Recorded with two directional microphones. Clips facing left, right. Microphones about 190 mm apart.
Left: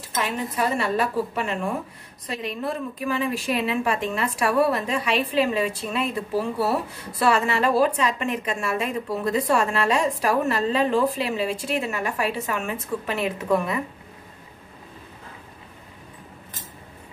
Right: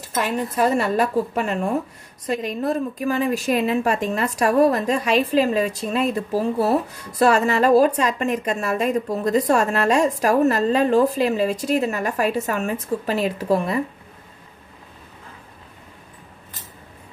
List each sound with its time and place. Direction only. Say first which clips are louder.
0.2 s a woman's voice: right 5 dB; 45° right (ahead or behind)